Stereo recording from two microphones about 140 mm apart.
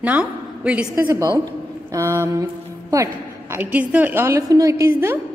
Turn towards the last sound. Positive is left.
turn(degrees=-15)  # may be behind; listen again after turning